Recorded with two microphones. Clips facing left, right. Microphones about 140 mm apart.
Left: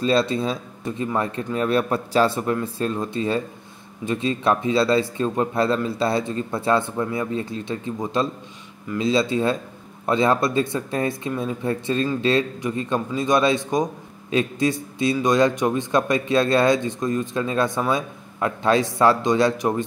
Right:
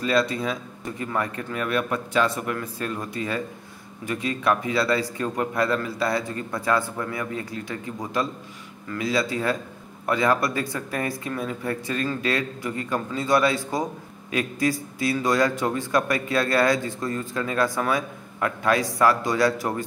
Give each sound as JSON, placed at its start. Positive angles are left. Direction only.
{"t": 0.0, "sound": "speech", "side_deg": 30}